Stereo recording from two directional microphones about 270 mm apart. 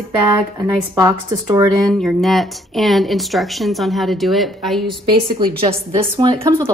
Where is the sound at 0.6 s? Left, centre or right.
Centre.